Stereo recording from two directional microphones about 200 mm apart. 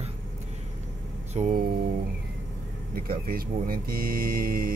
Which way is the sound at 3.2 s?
45° right (ahead or behind).